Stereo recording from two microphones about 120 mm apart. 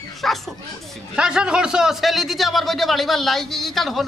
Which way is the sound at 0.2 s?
Centre (ahead or behind).